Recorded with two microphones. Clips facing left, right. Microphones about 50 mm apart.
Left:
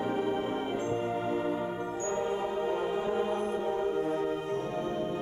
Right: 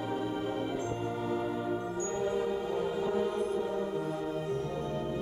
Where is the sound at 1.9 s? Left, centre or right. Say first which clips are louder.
Left 1 dB; left.